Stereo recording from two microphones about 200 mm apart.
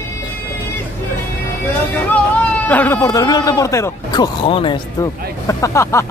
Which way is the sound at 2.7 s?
10° left (ahead or behind).